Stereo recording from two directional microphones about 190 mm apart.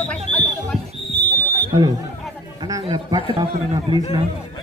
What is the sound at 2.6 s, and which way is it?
Speech, 20° right (ahead or behind).